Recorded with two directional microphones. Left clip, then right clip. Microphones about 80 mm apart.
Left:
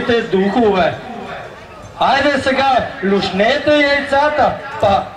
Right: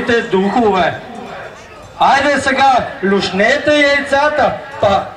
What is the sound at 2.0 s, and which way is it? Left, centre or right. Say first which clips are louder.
A man's voice: right 2 dB; right.